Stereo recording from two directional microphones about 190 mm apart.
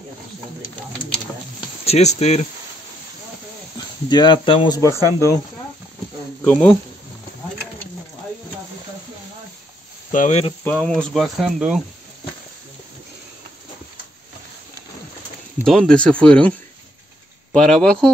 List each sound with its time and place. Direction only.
1.9 s speech: 35° left (ahead or behind)
3.7 s speech: 20° left (ahead or behind)
10.1 s speech: 40° left (ahead or behind)
10.6 s speech: 5° left (ahead or behind)
15.6 s speech: centre (ahead or behind)